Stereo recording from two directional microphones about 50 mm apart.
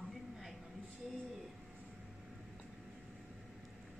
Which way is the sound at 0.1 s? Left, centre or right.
Centre.